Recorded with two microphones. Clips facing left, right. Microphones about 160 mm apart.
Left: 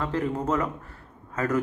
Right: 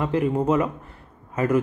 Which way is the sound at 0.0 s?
15° right (ahead or behind).